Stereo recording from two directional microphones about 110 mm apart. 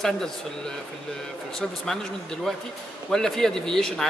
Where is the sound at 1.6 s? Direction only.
5° left (ahead or behind).